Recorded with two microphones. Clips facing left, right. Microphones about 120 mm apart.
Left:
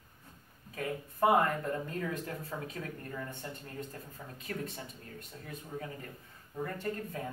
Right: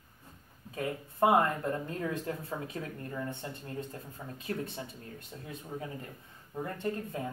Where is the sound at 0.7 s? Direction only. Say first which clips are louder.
Right 3 dB; 25° right (ahead or behind).